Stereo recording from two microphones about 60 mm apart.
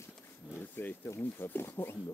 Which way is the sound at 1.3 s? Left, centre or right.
Left.